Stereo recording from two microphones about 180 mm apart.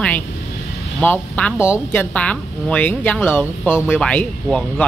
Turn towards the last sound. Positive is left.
turn(degrees=5)  # may be behind; listen again after turning